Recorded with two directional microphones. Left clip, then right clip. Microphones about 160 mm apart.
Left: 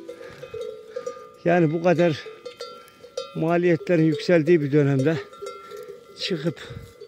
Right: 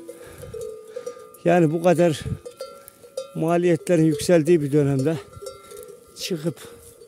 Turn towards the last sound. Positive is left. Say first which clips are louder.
# left 1 dB
turn(degrees=-15)  # may be behind; listen again after turning